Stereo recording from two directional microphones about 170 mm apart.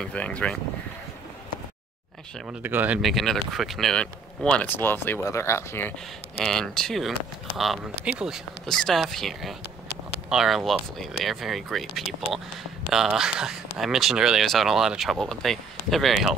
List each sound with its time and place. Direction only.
0.0 s speech: 5° left (ahead or behind)
2.4 s speech: 10° right (ahead or behind)
3.0 s speech: centre (ahead or behind)